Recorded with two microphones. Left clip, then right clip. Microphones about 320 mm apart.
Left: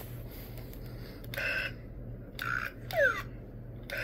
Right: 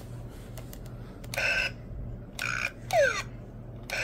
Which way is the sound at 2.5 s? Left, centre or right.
Centre.